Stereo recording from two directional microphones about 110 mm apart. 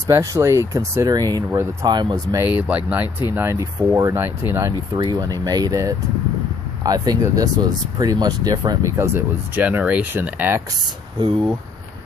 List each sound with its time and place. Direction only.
0.1 s speech: 30° right (ahead or behind)
2.3 s speech: 15° right (ahead or behind)
3.3 s speech: 25° right (ahead or behind)
4.9 s speech: 40° right (ahead or behind)
8.9 s speech: 20° right (ahead or behind)